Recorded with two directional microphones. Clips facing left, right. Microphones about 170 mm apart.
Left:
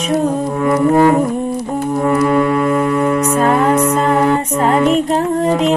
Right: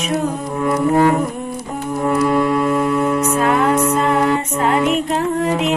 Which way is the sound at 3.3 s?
35° left (ahead or behind).